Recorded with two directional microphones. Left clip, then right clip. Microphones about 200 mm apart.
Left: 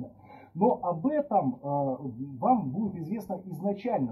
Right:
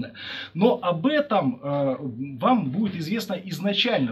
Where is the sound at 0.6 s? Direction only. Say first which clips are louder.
Right 4 dB; 45° right (ahead or behind).